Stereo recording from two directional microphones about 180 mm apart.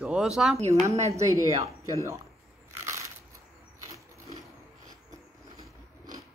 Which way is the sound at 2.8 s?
15° right (ahead or behind).